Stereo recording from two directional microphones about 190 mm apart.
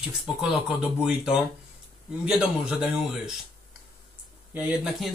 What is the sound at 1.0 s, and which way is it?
Speech, 5° right (ahead or behind).